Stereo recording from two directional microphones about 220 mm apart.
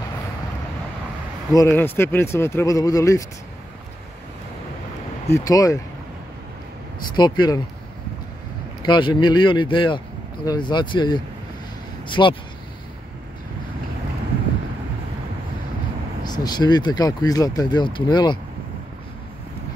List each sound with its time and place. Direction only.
1.5 s speech: 15° left (ahead or behind)
5.3 s speech: 15° left (ahead or behind)
7.2 s speech: 20° left (ahead or behind)
8.8 s speech: 20° left (ahead or behind)
16.3 s speech: 20° left (ahead or behind)